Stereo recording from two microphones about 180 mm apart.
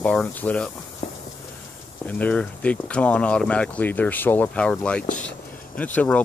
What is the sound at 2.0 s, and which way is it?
Speech, 10° left (ahead or behind).